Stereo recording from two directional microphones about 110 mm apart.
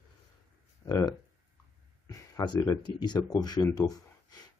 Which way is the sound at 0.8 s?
40° left (ahead or behind).